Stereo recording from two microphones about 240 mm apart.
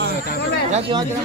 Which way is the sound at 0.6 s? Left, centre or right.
Right.